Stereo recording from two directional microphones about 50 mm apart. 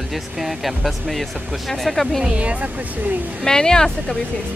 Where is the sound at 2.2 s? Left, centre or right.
Right.